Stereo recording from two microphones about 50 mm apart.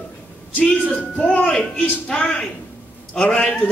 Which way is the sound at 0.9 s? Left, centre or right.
Left.